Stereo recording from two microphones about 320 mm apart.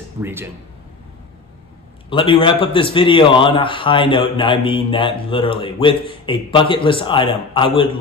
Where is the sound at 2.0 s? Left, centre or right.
Centre.